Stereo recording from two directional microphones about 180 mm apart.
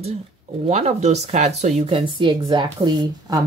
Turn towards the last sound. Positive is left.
turn(degrees=-25)  # may be behind; listen again after turning